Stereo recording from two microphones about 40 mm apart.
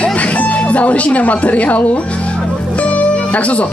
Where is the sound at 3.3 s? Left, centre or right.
Left.